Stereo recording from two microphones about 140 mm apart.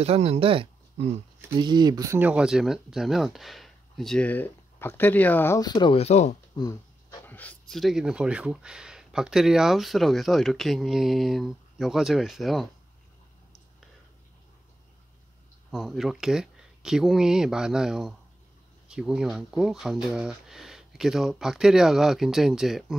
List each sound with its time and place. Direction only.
0.0 s speech: 45° right (ahead or behind)
1.6 s speech: 30° right (ahead or behind)
2.1 s speech: 10° right (ahead or behind); by 5.6 s 15° left (ahead or behind)
5.6 s speech: 30° left (ahead or behind)
5.9 s speech: 50° left (ahead or behind)
6.5 s a sound: 25° left (ahead or behind)
7.2 s speech: 10° left (ahead or behind)
15.7 s speech: centre (ahead or behind)